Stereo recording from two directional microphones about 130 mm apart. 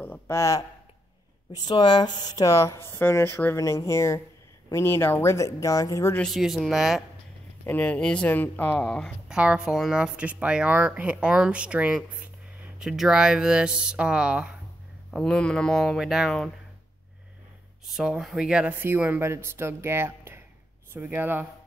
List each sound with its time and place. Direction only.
0.0 s speech: 15° left (ahead or behind)
1.7 s speech: 35° left (ahead or behind)
6.1 s speech: centre (ahead or behind)
7.6 s speech: 10° left (ahead or behind)
9.3 s speech: 5° right (ahead or behind)
15.0 s speech: 5° left (ahead or behind)
17.8 s speech: 5° right (ahead or behind)